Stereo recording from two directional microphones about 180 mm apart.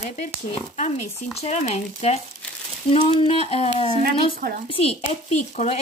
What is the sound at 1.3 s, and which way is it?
Speech, 35° left (ahead or behind).